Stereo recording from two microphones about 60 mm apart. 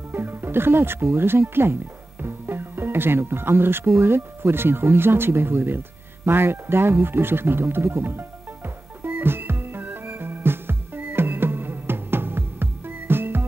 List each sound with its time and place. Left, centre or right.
0.1 s speech: right
4.0 s music: right